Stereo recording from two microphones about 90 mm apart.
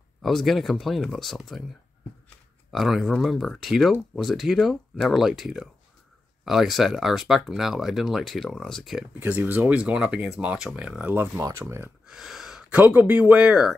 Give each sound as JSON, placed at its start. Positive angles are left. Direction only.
{"t": 0.2, "sound": "speech", "side_deg": 0}
{"t": 2.7, "sound": "speech", "side_deg": 0}
{"t": 9.2, "sound": "speech", "side_deg": -20}
{"t": 11.3, "sound": "speech", "side_deg": -35}
{"t": 11.6, "sound": "speech", "side_deg": -25}
{"t": 12.1, "sound": "a sound", "side_deg": -5}
{"t": 12.8, "sound": "speech", "side_deg": -15}